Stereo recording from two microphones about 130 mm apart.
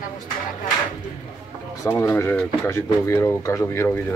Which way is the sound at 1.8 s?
20° left (ahead or behind).